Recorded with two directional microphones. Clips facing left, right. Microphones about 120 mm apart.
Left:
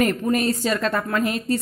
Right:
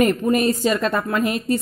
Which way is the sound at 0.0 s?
20° right (ahead or behind).